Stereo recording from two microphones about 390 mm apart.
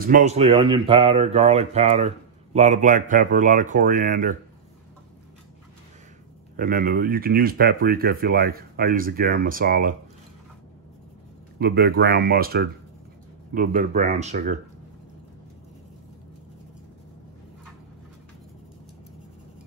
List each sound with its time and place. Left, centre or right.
0.0 s speech: centre
6.5 s speech: right
11.5 s speech: right